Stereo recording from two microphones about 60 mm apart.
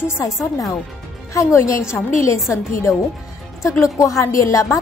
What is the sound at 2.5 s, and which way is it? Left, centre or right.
A woman's voice, left.